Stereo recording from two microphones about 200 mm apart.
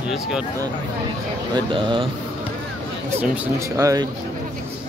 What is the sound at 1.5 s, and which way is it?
Speech, 25° right (ahead or behind).